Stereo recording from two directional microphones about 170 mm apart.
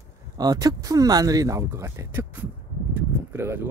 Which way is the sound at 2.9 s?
15° right (ahead or behind).